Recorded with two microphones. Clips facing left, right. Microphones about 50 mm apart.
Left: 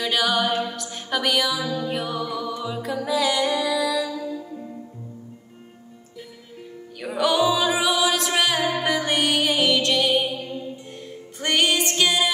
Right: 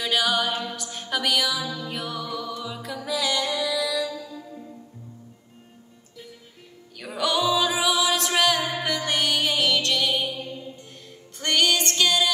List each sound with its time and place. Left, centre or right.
0.0 s music: centre; by 2.8 s left
3.1 s music: centre
4.0 s music: left
7.2 s music: centre
8.5 s music: left
8.8 s music: centre; by 10.6 s left
11.3 s music: centre